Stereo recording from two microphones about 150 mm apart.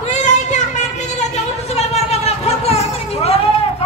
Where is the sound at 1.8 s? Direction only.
45° left (ahead or behind).